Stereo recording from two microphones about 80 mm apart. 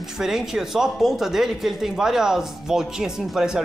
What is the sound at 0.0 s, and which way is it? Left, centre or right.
Speech, centre.